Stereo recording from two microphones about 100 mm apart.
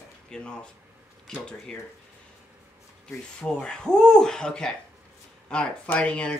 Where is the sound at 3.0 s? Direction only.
10° left (ahead or behind).